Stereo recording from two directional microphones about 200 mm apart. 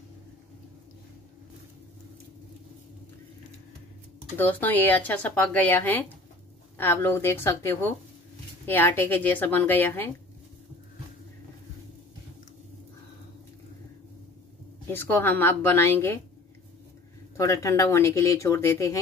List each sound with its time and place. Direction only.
4.4 s speech: 10° left (ahead or behind)
14.9 s speech: 10° left (ahead or behind)
17.4 s speech: 15° left (ahead or behind)